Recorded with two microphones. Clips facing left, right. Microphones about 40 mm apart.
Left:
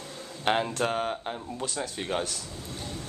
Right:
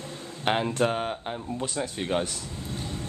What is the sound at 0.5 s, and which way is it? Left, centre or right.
Speech, centre.